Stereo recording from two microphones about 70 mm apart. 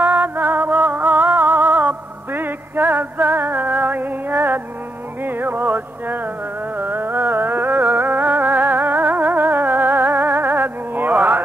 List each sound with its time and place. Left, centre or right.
0.0 s music: right
5.2 s a sound: right
6.8 s music: right